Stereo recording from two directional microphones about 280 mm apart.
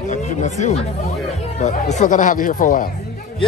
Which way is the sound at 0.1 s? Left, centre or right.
Left.